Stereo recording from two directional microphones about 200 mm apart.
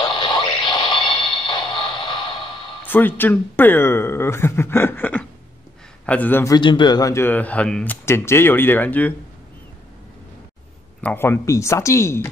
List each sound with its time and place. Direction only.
0.0 s a sound: 20° left (ahead or behind)
2.8 s a man's voice: 10° left (ahead or behind)
11.0 s a man's voice: 10° left (ahead or behind)